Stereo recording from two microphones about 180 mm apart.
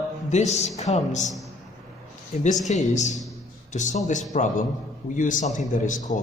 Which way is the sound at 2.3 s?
40° left (ahead or behind).